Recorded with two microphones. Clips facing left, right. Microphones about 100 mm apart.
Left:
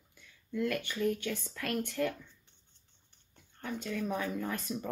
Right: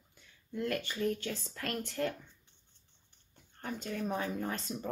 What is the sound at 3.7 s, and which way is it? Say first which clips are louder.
A woman's voice: left 1 dB; 35° right (ahead or behind).